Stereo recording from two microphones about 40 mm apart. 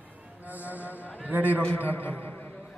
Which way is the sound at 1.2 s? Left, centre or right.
Right.